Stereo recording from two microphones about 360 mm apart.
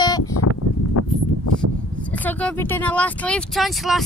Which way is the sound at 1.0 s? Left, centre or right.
Left.